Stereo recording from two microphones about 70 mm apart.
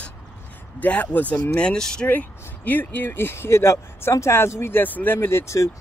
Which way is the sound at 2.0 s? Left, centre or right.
Left.